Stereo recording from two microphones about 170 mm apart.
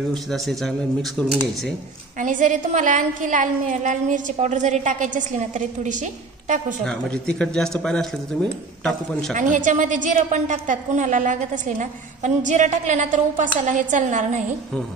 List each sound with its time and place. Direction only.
0.3 s speech: centre (ahead or behind)
2.1 s a woman's voice: 50° right (ahead or behind)
6.8 s speech: 5° left (ahead or behind)
9.3 s a woman's voice: 45° right (ahead or behind)